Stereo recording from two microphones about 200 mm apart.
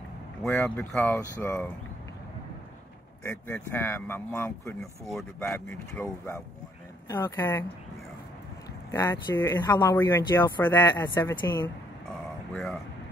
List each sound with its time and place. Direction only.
0.4 s speech: centre (ahead or behind)
3.3 s speech: 10° left (ahead or behind)
8.9 s speech: 15° left (ahead or behind)
12.5 s speech: centre (ahead or behind)